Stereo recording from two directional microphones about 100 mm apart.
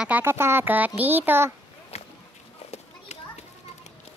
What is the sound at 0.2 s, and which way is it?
A child's voice, 25° right (ahead or behind).